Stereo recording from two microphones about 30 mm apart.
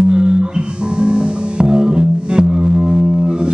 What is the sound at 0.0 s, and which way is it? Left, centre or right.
Music, right.